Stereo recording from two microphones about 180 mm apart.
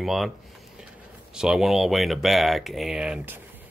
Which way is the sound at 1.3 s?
Centre (ahead or behind).